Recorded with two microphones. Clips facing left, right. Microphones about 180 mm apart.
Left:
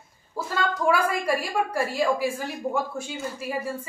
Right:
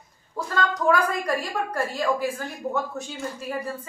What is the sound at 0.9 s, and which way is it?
A woman's voice, 5° left (ahead or behind).